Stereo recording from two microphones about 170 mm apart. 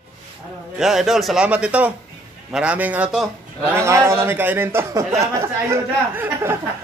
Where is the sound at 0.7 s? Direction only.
Centre (ahead or behind).